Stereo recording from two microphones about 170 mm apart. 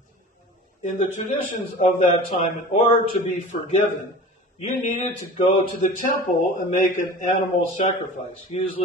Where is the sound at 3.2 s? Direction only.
45° left (ahead or behind).